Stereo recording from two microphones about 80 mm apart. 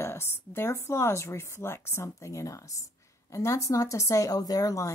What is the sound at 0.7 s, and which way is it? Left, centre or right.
A woman's voice, left.